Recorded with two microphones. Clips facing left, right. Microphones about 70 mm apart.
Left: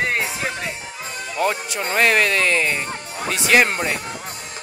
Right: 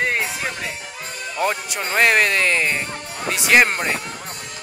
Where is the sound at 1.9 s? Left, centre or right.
Right.